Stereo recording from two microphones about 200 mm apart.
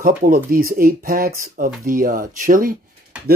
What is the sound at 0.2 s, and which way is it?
Speech, 45° right (ahead or behind).